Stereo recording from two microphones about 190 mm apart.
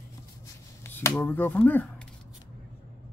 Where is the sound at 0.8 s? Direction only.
15° left (ahead or behind).